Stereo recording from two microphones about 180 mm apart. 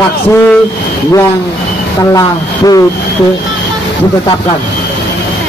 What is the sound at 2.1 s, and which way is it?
Speech, 20° left (ahead or behind).